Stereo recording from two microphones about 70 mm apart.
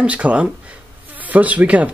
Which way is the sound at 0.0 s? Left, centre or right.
Centre.